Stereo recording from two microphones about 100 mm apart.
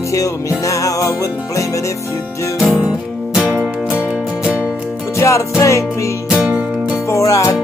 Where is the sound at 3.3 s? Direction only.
15° right (ahead or behind).